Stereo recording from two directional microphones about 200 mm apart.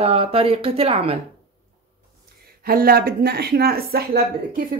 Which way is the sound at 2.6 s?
50° right (ahead or behind).